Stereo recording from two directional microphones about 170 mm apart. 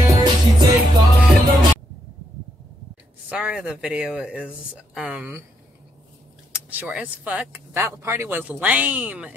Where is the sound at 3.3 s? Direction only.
5° right (ahead or behind).